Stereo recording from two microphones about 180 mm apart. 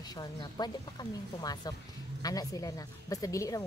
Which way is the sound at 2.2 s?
20° left (ahead or behind).